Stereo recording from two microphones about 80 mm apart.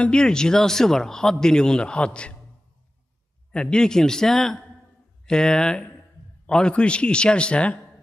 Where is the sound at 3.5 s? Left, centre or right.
Centre.